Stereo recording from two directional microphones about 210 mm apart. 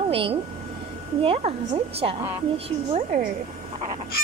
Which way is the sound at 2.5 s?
30° right (ahead or behind).